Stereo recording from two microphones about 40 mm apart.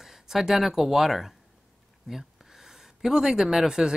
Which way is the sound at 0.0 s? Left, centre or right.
Centre.